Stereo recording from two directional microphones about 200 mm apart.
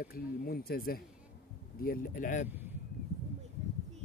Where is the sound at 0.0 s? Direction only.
50° left (ahead or behind).